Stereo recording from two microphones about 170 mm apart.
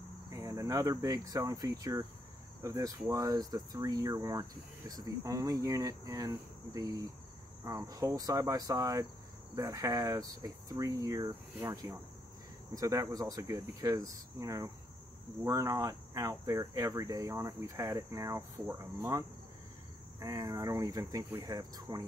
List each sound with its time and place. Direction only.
0.3 s speech: 20° right (ahead or behind)